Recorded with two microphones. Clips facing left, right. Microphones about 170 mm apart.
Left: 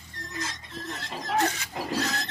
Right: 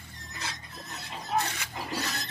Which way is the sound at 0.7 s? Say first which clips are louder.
Left 6 dB; 90° left.